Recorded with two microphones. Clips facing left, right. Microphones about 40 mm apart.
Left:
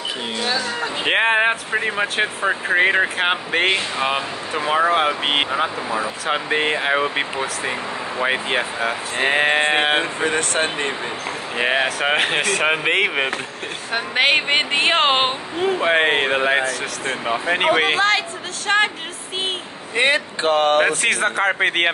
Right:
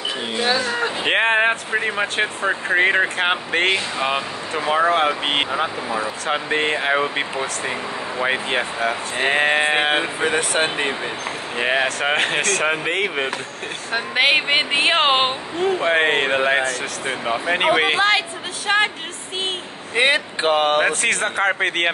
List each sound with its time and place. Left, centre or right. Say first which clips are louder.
1.0 s speech: left 1 dB; centre
10.2 s speech: right 1 dB; centre
11.5 s speech: even; centre
12.8 s speech: left 3 dB; left
13.9 s speech: even; centre
20.0 s speech: even; centre
20.8 s speech: left 1 dB; centre